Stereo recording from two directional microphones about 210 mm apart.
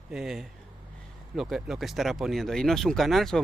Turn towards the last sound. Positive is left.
turn(degrees=0)  # may be behind; listen again after turning